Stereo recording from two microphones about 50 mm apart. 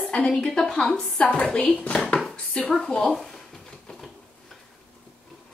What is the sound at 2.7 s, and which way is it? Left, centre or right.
Speech, centre.